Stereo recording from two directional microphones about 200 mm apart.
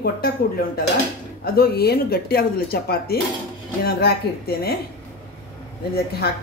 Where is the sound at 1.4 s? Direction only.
50° left (ahead or behind).